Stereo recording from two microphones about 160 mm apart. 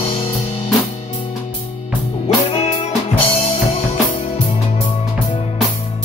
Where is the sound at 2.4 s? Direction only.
40° left (ahead or behind).